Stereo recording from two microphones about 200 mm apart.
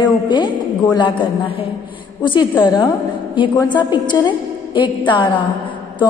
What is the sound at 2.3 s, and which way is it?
A woman's voice, 25° left (ahead or behind).